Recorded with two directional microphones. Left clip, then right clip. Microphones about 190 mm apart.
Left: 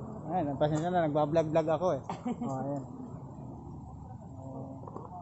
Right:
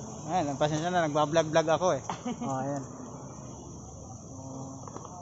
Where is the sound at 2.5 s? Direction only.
20° right (ahead or behind).